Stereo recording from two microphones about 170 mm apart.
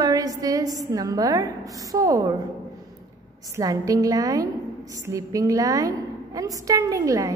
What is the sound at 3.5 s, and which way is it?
A woman's voice, 20° right (ahead or behind).